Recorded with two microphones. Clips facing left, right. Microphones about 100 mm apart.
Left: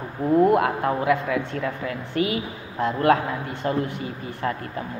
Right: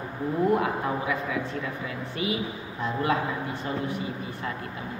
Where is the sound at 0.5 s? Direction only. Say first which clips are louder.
Left 5 dB; 65° left (ahead or behind).